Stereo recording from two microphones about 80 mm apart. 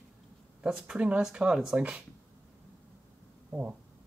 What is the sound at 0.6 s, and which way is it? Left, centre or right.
Speech, centre.